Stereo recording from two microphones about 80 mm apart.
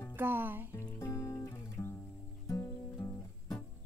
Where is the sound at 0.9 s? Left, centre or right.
Left.